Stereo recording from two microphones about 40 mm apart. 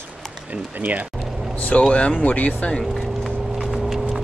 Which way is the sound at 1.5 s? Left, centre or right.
Left.